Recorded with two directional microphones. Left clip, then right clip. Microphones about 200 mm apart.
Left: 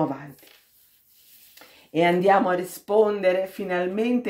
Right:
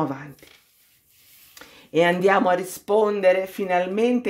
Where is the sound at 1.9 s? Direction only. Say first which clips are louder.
Right 1 dB; 30° right (ahead or behind).